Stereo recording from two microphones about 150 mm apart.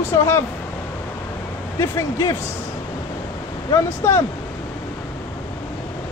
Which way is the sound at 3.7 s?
15° left (ahead or behind).